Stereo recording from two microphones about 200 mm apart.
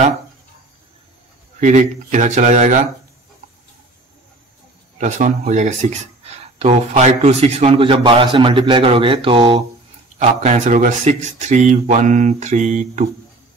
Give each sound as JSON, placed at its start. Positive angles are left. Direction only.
{"t": 1.6, "sound": "speech", "side_deg": -35}
{"t": 4.9, "sound": "speech", "side_deg": -35}
{"t": 10.1, "sound": "speech", "side_deg": -35}